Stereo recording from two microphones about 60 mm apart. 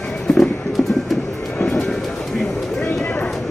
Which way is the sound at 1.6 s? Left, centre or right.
Centre.